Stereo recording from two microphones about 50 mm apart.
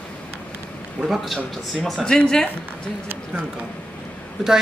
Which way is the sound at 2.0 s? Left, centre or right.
Centre.